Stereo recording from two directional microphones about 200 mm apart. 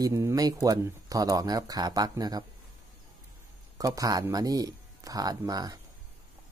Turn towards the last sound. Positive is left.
turn(degrees=-20)  # may be behind; listen again after turning